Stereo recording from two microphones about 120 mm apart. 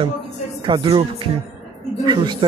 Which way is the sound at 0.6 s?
40° right (ahead or behind).